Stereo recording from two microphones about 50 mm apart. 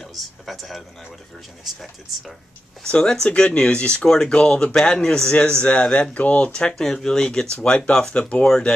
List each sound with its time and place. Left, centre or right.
0.0 s speech: centre
2.8 s speech: centre
6.7 s speech: centre